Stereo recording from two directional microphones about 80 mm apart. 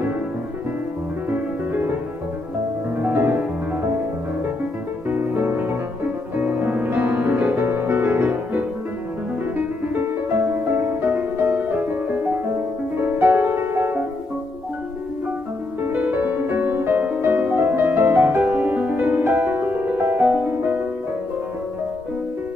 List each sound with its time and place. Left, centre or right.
1.3 s music: right
3.0 s music: right
5.1 s music: right
15.9 s music: right